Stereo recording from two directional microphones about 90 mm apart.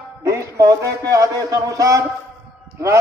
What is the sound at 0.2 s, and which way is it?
A man's voice, 35° right (ahead or behind).